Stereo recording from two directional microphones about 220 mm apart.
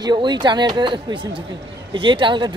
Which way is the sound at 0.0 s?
20° right (ahead or behind).